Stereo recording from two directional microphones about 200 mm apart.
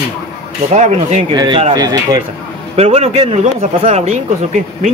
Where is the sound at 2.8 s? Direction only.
30° right (ahead or behind).